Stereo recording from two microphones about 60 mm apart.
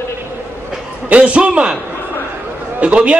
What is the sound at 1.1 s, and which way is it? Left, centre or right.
Speech, centre.